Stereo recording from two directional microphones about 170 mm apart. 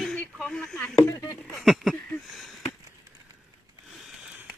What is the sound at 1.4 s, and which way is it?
Speech, centre (ahead or behind).